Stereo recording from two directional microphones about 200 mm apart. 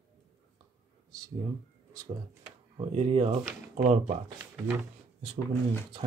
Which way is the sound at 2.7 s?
30° right (ahead or behind).